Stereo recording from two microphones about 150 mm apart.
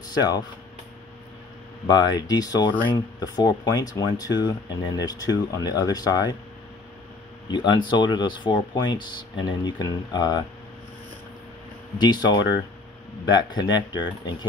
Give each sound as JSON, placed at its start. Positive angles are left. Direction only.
{"t": 0.2, "sound": "speech", "side_deg": 30}
{"t": 1.9, "sound": "speech", "side_deg": 30}
{"t": 7.5, "sound": "speech", "side_deg": 30}
{"t": 12.0, "sound": "speech", "side_deg": 30}